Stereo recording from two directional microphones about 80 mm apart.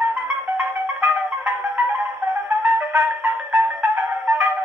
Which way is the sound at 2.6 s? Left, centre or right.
Centre.